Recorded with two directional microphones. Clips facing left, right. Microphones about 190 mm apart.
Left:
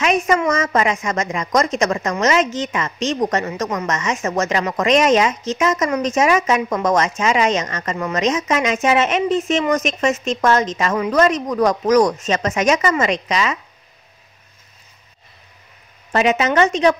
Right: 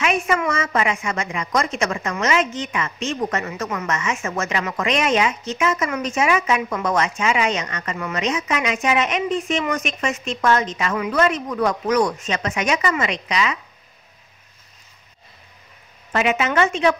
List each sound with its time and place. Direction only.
0.0 s a woman's voice: 40° left (ahead or behind)
16.1 s a woman's voice: 35° left (ahead or behind)